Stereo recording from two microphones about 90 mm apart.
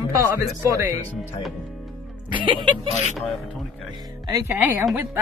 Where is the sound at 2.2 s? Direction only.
65° right (ahead or behind).